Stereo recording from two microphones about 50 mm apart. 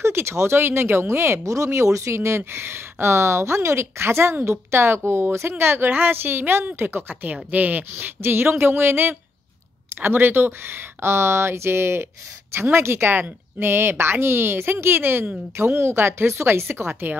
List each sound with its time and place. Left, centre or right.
0.0 s speech: right
5.5 s speech: right
7.5 s speech: right
8.0 s speech: right